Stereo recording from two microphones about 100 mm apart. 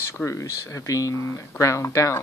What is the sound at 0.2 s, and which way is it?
Speech, 30° left (ahead or behind).